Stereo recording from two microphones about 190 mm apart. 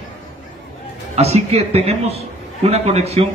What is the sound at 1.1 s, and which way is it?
A man's voice, 35° right (ahead or behind).